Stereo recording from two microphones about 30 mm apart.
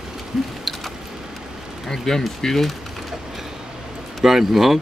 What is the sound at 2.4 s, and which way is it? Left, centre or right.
Speech, centre.